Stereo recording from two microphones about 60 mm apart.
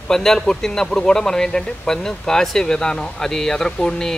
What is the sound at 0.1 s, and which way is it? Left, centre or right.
Speech, centre.